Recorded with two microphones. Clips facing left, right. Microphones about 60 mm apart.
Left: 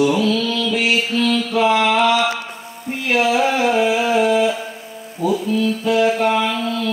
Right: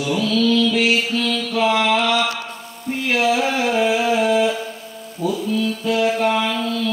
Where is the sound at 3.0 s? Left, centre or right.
Left.